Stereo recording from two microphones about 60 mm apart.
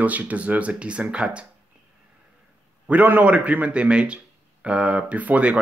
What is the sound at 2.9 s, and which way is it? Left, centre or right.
Speech, right.